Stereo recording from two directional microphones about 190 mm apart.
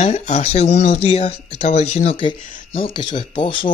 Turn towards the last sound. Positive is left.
turn(degrees=25)  # may be behind; listen again after turning